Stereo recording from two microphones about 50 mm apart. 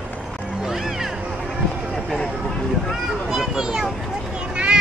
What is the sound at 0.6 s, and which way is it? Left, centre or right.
Music, centre.